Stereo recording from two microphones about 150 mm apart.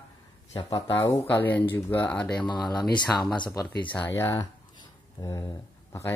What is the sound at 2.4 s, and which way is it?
Speech, 30° left (ahead or behind).